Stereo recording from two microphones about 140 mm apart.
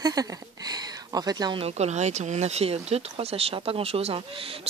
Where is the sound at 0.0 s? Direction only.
25° right (ahead or behind).